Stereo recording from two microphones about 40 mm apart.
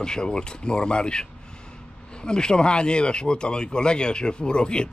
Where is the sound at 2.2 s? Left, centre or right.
Left.